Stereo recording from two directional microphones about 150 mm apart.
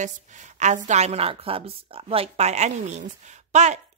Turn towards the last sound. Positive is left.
turn(degrees=-50)  # may be behind; listen again after turning